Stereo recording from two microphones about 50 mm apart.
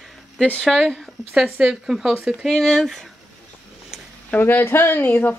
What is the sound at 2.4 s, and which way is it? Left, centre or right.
Speech, centre.